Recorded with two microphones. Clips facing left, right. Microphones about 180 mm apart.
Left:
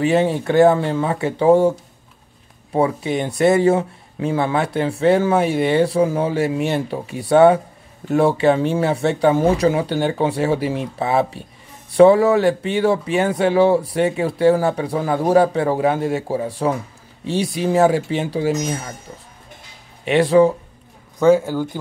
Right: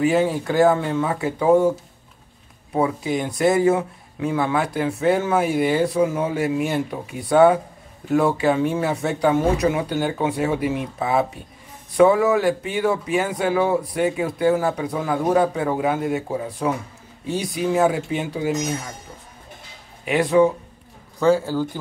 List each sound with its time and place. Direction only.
0.0 s speech: 25° left (ahead or behind)
2.7 s speech: 25° left (ahead or behind)
20.1 s speech: 30° left (ahead or behind)
21.2 s speech: 15° left (ahead or behind)